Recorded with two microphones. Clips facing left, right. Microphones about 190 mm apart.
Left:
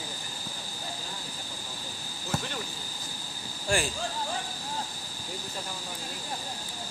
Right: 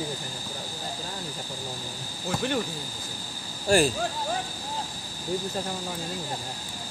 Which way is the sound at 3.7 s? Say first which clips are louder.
Right 8 dB; 40° right (ahead or behind).